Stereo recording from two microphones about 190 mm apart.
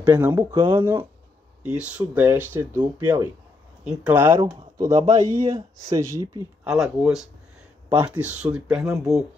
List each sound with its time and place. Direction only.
0.0 s speech: 10° right (ahead or behind)
1.6 s speech: 5° right (ahead or behind)
4.4 s speech: 20° right (ahead or behind)
4.9 s a man's voice: 35° right (ahead or behind)
5.3 s speech: 15° right (ahead or behind)
6.6 s speech: 5° right (ahead or behind)